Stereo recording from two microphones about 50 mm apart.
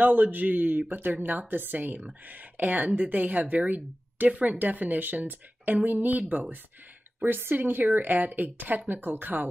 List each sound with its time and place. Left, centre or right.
0.0 s speech: right